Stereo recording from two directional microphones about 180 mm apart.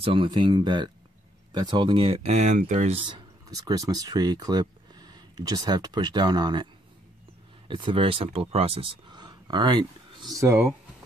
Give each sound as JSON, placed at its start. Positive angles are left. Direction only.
{"t": 0.0, "sound": "speech", "side_deg": -30}
{"t": 3.1, "sound": "speech", "side_deg": -20}
{"t": 10.4, "sound": "speech", "side_deg": -15}